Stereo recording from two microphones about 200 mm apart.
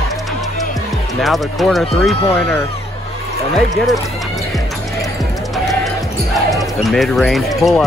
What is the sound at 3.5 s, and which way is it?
Speech, centre (ahead or behind).